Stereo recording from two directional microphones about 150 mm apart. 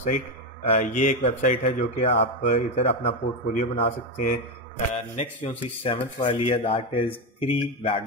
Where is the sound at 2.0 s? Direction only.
40° left (ahead or behind).